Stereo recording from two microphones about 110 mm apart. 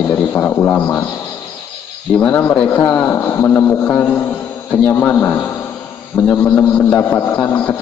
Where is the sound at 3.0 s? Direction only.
25° left (ahead or behind).